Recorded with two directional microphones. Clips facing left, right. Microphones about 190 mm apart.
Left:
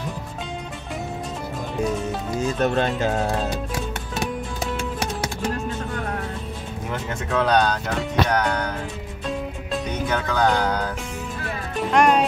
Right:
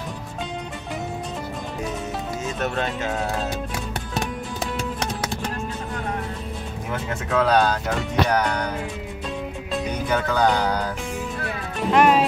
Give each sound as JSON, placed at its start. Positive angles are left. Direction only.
{"t": 2.6, "sound": "speech", "side_deg": 35}
{"t": 6.9, "sound": "speech", "side_deg": 0}
{"t": 8.3, "sound": "music", "side_deg": -10}
{"t": 11.9, "sound": "speech", "side_deg": -5}